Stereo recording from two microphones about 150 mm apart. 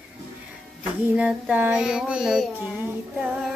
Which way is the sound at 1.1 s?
10° right (ahead or behind).